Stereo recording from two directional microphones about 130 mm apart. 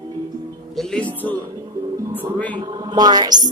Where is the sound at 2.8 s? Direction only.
30° right (ahead or behind).